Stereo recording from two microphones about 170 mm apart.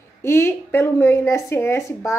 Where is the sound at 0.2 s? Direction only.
15° left (ahead or behind).